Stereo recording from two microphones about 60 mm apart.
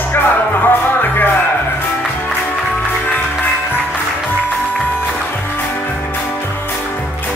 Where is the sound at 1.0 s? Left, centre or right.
Left.